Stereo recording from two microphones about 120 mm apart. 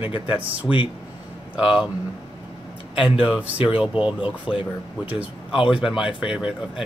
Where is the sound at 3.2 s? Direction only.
10° right (ahead or behind).